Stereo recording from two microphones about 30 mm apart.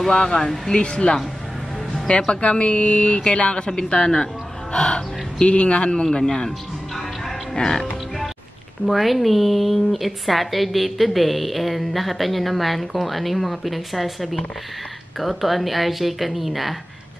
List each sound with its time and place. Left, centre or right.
0.1 s a woman's voice: left
4.7 s speech: left
6.2 s a woman's voice: centre
7.5 s a woman's voice: left
8.9 s a woman's voice: centre